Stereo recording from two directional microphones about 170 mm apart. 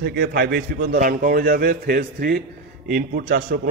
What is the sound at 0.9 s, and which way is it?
A man's voice, 50° right (ahead or behind).